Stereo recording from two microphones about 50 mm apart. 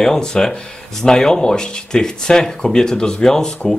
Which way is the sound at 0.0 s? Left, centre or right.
Centre.